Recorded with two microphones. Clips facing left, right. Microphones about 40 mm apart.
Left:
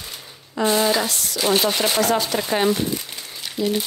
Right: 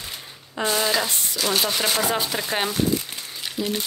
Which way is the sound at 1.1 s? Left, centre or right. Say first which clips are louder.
Left 1 dB; right.